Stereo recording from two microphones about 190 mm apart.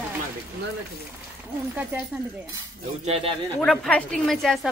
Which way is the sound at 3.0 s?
30° right (ahead or behind).